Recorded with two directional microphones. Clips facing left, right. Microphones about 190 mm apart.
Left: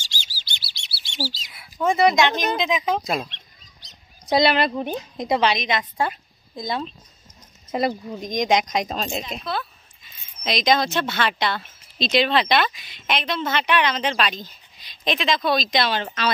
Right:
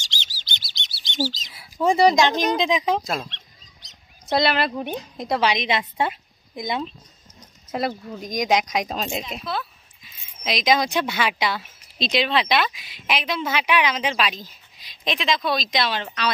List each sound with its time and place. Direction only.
0.6 s bird: 10° left (ahead or behind)
1.6 s speech: 35° right (ahead or behind)
2.3 s a woman's voice: 5° left (ahead or behind)
2.6 s speech: 30° right (ahead or behind)
3.2 s speech: 15° left (ahead or behind)
4.4 s speech: centre (ahead or behind)
5.5 s a woman's voice: 25° right (ahead or behind)
7.7 s speech: centre (ahead or behind)